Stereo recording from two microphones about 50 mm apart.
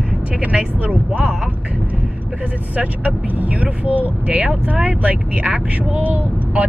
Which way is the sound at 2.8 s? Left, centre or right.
Right.